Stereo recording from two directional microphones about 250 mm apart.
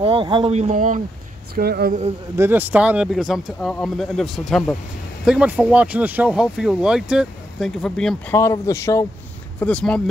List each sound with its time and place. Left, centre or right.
0.0 s speech: right
2.3 s speech: centre